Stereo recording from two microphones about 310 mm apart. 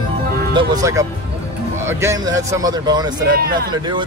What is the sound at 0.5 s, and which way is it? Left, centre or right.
A man's voice, centre.